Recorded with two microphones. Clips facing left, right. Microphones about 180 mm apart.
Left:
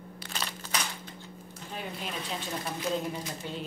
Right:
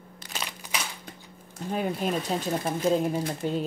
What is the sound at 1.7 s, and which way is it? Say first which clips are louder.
Speech: right 11 dB; 45° right (ahead or behind).